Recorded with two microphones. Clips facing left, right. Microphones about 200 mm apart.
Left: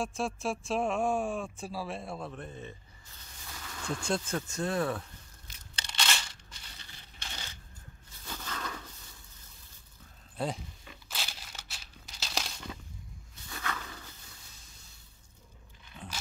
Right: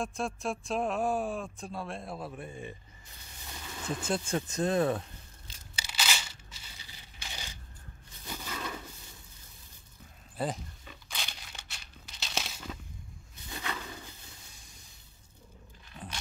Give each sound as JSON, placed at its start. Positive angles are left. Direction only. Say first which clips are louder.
{"t": 0.0, "sound": "speech", "louder": "left 1 dB", "side_deg": 0}
{"t": 4.0, "sound": "speech", "louder": "even", "side_deg": -5}
{"t": 4.4, "sound": "speech", "louder": "right 3 dB", "side_deg": -20}
{"t": 5.8, "sound": "crushing", "louder": "even", "side_deg": -5}
{"t": 8.3, "sound": "a sound", "louder": "right 1 dB", "side_deg": -10}
{"t": 10.3, "sound": "speech", "louder": "right 1 dB", "side_deg": 0}
{"t": 11.1, "sound": "crumpling", "louder": "left 1 dB", "side_deg": 5}
{"t": 13.5, "sound": "a sound", "louder": "right 1 dB", "side_deg": -20}